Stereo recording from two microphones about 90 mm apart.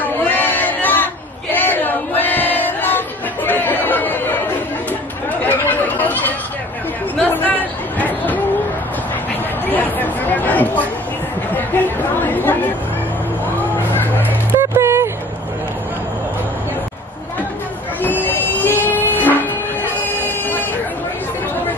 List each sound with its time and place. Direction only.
0.0 s a sound: 20° left (ahead or behind)
3.4 s chatter: 20° left (ahead or behind)
5.4 s chatter: 20° left (ahead or behind)
7.3 s chatter: 20° left (ahead or behind)
9.7 s chatter: 20° left (ahead or behind)
14.5 s music: 30° right (ahead or behind)
18.0 s music: 20° left (ahead or behind)